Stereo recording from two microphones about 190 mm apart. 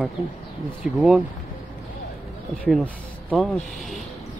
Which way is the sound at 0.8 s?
5° right (ahead or behind).